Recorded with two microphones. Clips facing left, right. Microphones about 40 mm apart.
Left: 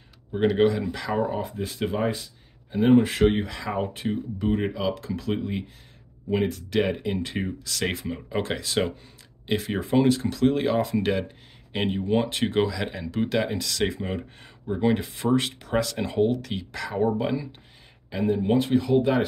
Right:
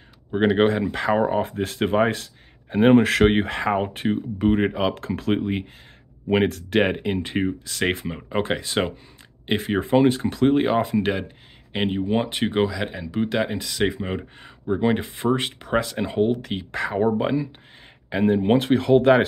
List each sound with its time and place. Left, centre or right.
0.6 s speech: right
1.1 s speech: right
1.4 s speech: right
6.2 s speech: right
7.2 s speech: right
16.3 s speech: right
18.1 s speech: right